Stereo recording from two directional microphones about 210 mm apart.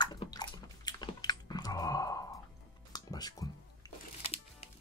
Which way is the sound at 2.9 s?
20° left (ahead or behind).